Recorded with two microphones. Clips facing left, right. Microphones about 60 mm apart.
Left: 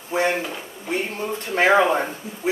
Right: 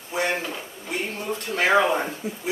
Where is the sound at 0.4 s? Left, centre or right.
Centre.